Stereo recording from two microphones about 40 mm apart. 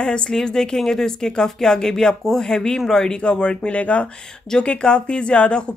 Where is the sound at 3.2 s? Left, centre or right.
Left.